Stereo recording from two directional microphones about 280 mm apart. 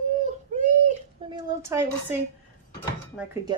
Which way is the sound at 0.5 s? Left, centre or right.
Right.